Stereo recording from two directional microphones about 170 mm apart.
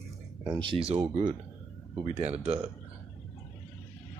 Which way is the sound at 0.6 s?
30° right (ahead or behind).